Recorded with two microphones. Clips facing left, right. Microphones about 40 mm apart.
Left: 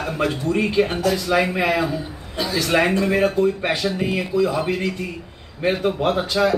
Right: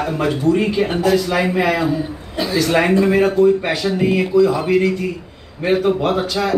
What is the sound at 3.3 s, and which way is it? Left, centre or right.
A man's voice, centre.